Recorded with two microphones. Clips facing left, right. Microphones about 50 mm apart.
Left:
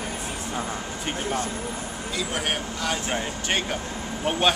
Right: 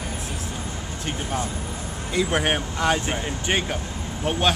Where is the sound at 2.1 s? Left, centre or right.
Right.